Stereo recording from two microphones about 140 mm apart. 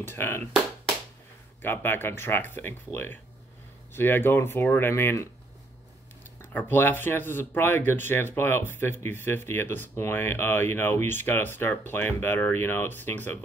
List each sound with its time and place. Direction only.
0.0 s speech: 15° left (ahead or behind)
1.6 s speech: 15° left (ahead or behind)
6.5 s speech: 15° left (ahead or behind)